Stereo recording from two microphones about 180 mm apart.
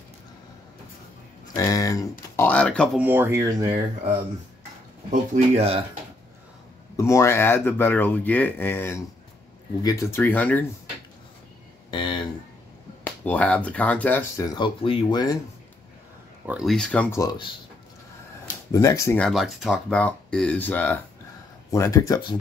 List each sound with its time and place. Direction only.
1.5 s speech: 20° left (ahead or behind)
3.0 s speech: 10° right (ahead or behind)
5.1 s speech: 40° right (ahead or behind)
7.0 s speech: 15° left (ahead or behind)
11.9 s speech: 25° left (ahead or behind)
13.0 s speech: 10° left (ahead or behind); by 15.3 s 25° left (ahead or behind)
16.4 s speech: 5° right (ahead or behind)
17.2 s speech: 20° left (ahead or behind)
18.7 s speech: 20° left (ahead or behind)
19.2 s speech: centre (ahead or behind); by 22.3 s 20° left (ahead or behind)